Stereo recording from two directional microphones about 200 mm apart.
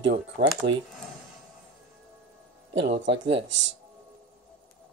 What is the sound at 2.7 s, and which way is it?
Speech, 60° right (ahead or behind).